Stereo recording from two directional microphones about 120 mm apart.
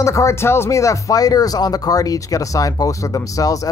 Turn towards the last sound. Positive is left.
turn(degrees=30)  # may be behind; listen again after turning